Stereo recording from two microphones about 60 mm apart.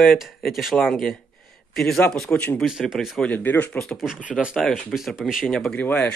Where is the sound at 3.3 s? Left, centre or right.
Left.